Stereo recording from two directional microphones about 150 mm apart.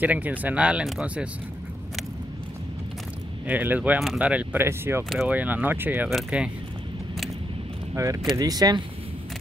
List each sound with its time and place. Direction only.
0.0 s speech: 10° right (ahead or behind)
3.4 s speech: 10° right (ahead or behind)
7.9 s speech: 20° right (ahead or behind)